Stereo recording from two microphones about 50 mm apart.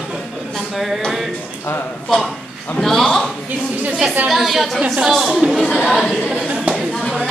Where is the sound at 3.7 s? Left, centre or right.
Right.